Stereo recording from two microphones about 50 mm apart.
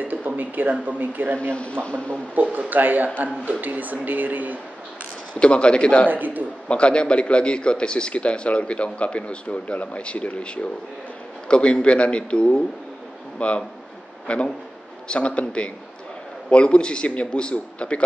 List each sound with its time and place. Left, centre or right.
0.0 s speech: right
1.5 s a man's voice: left
2.3 s speech: right
5.4 s a man's voice: left
6.0 s speech: right
6.7 s a man's voice: left